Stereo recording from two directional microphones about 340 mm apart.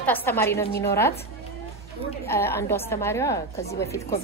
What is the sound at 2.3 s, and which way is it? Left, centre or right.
A woman's voice, centre.